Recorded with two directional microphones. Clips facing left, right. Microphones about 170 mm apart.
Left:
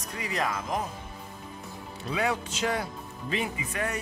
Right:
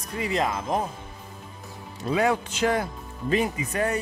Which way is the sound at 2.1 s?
50° right (ahead or behind).